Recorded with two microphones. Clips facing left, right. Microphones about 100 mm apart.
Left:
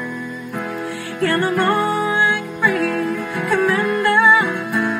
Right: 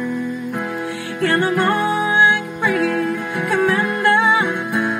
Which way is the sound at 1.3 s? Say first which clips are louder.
Even; 25° right (ahead or behind).